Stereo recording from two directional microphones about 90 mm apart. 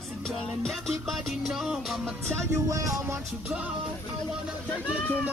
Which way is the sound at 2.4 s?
40° right (ahead or behind).